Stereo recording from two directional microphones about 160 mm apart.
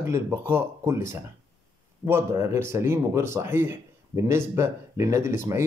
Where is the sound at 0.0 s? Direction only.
15° right (ahead or behind).